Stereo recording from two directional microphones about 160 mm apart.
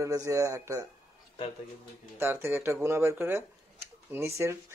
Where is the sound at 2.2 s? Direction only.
15° right (ahead or behind).